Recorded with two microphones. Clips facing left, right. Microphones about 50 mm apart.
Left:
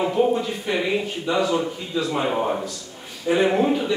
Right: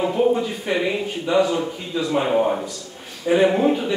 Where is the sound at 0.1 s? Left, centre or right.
Centre.